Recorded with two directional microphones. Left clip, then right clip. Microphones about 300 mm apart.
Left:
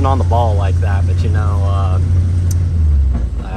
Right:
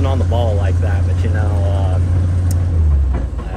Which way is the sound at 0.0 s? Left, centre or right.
Centre.